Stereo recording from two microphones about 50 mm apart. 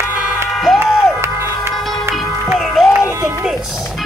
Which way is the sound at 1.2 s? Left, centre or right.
Right.